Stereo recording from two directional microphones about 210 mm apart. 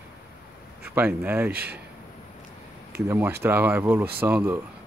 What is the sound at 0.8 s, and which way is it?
Speech, 10° right (ahead or behind).